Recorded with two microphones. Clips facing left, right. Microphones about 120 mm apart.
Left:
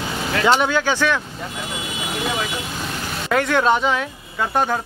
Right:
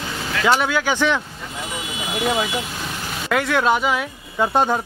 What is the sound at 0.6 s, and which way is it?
Speech, 10° right (ahead or behind).